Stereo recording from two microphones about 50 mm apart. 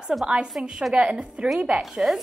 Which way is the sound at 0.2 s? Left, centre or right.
Centre.